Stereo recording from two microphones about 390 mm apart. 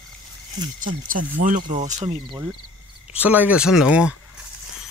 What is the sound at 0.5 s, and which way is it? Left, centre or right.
Speech, centre.